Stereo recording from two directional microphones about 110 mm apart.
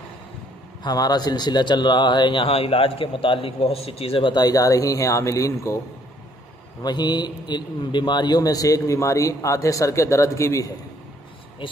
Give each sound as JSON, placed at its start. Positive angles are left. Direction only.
{"t": 0.8, "sound": "speech", "side_deg": 35}
{"t": 6.8, "sound": "a man's voice", "side_deg": 40}
{"t": 11.6, "sound": "speech", "side_deg": 50}